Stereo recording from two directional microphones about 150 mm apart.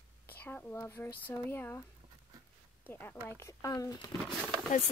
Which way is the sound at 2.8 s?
15° left (ahead or behind).